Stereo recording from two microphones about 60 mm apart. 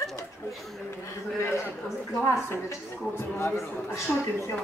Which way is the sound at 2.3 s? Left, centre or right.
Left.